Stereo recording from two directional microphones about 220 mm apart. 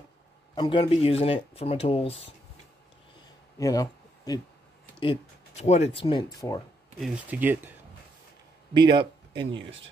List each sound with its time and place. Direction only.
0.6 s speech: 25° left (ahead or behind)
3.5 s a sound: 15° left (ahead or behind)
5.0 s speech: 25° left (ahead or behind)
7.0 s speech: 5° right (ahead or behind)
8.7 s speech: 20° right (ahead or behind)